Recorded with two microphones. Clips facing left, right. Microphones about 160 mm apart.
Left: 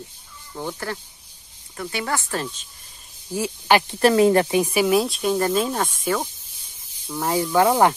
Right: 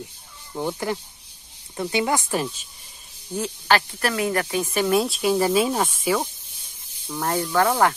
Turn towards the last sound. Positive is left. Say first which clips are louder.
# left 3 dB
turn(degrees=15)  # may be behind; listen again after turning